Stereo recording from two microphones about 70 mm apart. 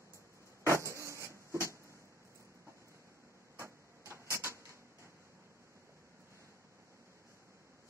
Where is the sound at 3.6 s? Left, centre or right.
Right.